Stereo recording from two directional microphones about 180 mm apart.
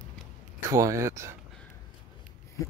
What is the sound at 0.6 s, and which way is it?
Speech, 15° right (ahead or behind).